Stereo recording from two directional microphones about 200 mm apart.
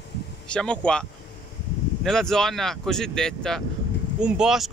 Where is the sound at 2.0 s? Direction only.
Centre (ahead or behind).